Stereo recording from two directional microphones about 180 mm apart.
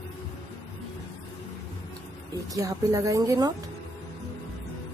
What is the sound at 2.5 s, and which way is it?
Speech, 20° right (ahead or behind).